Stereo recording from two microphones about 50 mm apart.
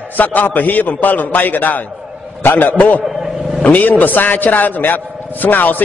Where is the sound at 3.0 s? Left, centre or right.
Centre.